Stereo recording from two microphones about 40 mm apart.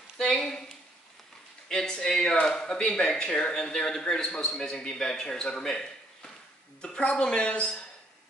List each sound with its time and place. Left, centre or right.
0.2 s speech: left
1.7 s a man's voice: centre
6.8 s a woman's voice: left